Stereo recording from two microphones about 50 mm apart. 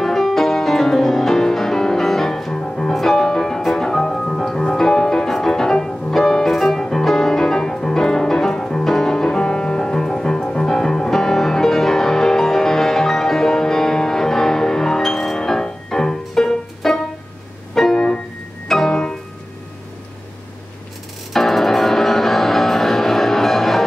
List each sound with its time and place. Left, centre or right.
0.0 s music: centre
2.9 s music: centre
17.9 s keyboard: centre
18.7 s music: centre
21.3 s music: centre